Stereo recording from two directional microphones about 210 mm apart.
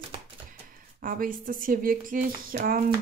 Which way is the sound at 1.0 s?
40° right (ahead or behind).